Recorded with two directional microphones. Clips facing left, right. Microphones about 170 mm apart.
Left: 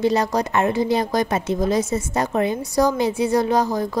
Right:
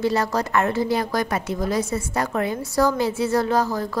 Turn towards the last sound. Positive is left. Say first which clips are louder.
# left 2 dB
turn(degrees=15)  # may be behind; listen again after turning